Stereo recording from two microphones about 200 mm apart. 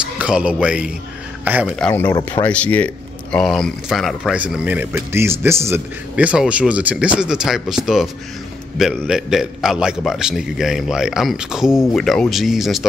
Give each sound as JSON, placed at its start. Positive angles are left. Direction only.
{"t": 0.2, "sound": "a man's voice", "side_deg": -5}
{"t": 1.8, "sound": "speech", "side_deg": 10}
{"t": 2.0, "sound": "speech", "side_deg": 20}
{"t": 2.4, "sound": "speech", "side_deg": 5}